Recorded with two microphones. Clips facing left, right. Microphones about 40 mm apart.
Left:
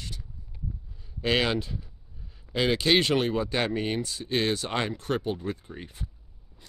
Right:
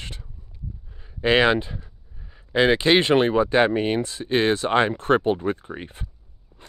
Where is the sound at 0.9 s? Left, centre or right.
Right.